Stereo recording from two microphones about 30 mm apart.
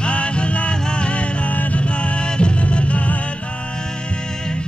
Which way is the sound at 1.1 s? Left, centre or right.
Left.